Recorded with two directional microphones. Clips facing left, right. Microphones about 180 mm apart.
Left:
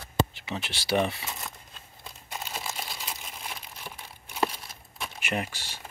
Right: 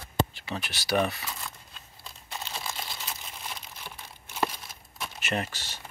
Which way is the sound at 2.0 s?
10° left (ahead or behind).